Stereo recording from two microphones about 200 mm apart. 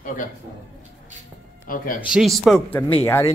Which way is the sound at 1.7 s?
45° left (ahead or behind).